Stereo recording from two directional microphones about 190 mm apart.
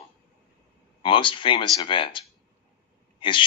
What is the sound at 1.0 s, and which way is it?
Speech, 25° left (ahead or behind).